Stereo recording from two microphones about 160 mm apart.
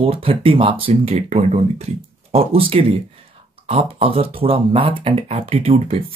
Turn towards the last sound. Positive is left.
turn(degrees=-40)  # may be behind; listen again after turning